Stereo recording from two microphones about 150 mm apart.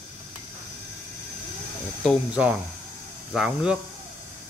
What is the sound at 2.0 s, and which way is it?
Speech, 10° right (ahead or behind).